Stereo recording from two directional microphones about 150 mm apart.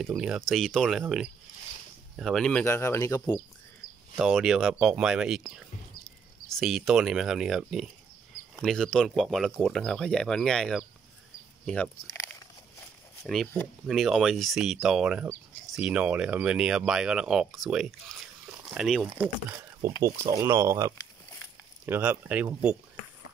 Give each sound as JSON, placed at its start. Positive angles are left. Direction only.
{"t": 0.0, "sound": "speech", "side_deg": -5}
{"t": 2.6, "sound": "speech", "side_deg": 15}
{"t": 4.2, "sound": "speech", "side_deg": 0}
{"t": 6.5, "sound": "speech", "side_deg": 0}
{"t": 20.0, "sound": "speech", "side_deg": -20}